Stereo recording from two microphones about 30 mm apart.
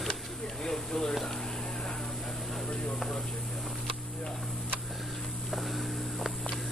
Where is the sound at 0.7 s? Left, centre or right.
Centre.